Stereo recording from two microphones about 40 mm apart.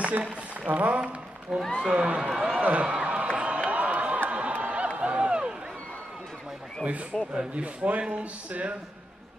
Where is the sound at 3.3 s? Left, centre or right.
Right.